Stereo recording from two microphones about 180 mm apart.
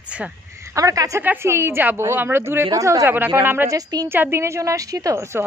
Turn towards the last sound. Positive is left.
turn(degrees=-15)  # may be behind; listen again after turning